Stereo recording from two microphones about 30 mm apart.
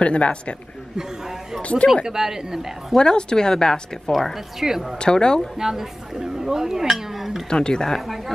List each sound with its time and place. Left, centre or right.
0.0 s a man's voice: left
1.6 s speech: left
2.0 s speech: centre
3.0 s speech: left
4.1 s speech: centre
4.6 s speech: centre
4.9 s speech: left
5.6 s speech: centre
7.4 s speech: left